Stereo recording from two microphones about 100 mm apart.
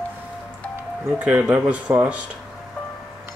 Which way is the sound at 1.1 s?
10° right (ahead or behind).